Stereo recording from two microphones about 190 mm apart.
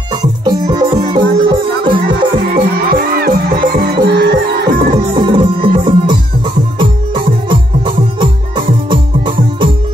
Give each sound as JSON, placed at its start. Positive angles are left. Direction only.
{"t": 0.1, "sound": "music", "side_deg": -25}
{"t": 2.0, "sound": "music", "side_deg": -50}
{"t": 4.9, "sound": "music", "side_deg": -25}